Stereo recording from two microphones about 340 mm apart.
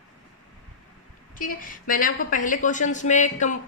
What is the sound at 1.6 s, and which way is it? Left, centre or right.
A woman's voice, left.